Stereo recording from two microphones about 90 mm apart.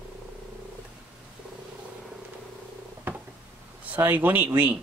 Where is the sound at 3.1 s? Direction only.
20° right (ahead or behind).